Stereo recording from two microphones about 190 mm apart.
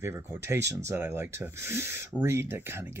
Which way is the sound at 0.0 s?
15° right (ahead or behind).